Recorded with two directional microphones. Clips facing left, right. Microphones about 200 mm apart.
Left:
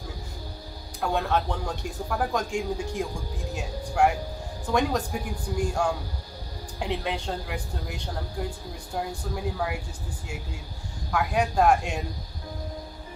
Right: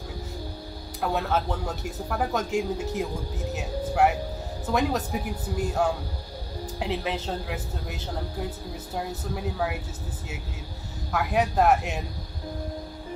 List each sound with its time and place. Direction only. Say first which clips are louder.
1.0 s speech: even; 5° right (ahead or behind)
3.5 s music: right 1 dB; 5° right (ahead or behind)
4.6 s speech: even; 5° right (ahead or behind)
11.1 s speech: even; centre (ahead or behind)